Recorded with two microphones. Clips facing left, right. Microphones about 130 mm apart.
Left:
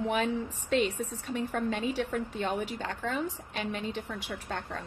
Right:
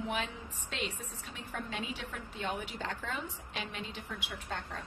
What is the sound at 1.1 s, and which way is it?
Speech, 40° left (ahead or behind).